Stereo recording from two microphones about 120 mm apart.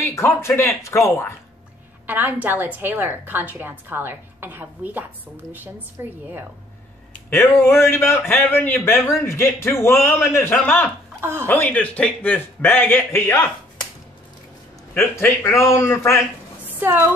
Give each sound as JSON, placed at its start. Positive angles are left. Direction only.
{"t": 0.0, "sound": "a man's voice", "side_deg": 20}
{"t": 2.0, "sound": "a woman's voice", "side_deg": -15}
{"t": 7.2, "sound": "a man's voice", "side_deg": 20}
{"t": 11.1, "sound": "speech", "side_deg": -20}
{"t": 11.4, "sound": "a man's voice", "side_deg": 15}
{"t": 15.0, "sound": "a man's voice", "side_deg": 20}
{"t": 16.8, "sound": "speech", "side_deg": -20}